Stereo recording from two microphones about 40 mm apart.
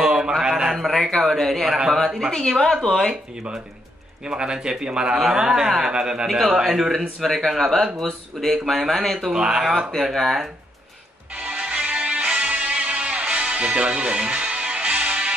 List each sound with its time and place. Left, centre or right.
0.0 s a sound: centre
0.4 s a man's voice: centre
0.7 s speech: centre
1.7 s speech: centre
2.3 s speech: centre
4.3 s speech: right
6.2 s speech: centre
9.3 s speech: centre
10.1 s speech: centre
11.4 s music: right